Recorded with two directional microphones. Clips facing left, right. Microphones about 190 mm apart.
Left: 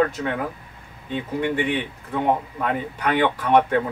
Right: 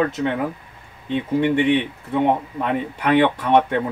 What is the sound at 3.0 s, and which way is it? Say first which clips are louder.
Speech: right 4 dB; 25° right (ahead or behind).